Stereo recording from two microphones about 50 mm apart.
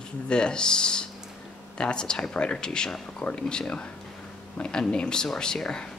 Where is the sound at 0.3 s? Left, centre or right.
Centre.